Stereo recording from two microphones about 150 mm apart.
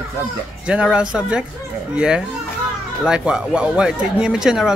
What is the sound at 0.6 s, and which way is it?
Speech, 5° right (ahead or behind).